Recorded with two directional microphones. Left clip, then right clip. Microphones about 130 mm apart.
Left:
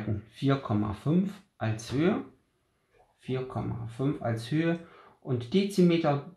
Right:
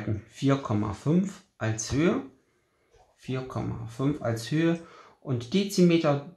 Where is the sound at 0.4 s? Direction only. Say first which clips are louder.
Right 2 dB; 25° right (ahead or behind).